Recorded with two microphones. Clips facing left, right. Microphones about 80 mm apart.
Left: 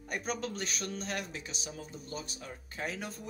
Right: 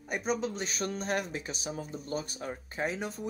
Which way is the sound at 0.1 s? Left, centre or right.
Centre.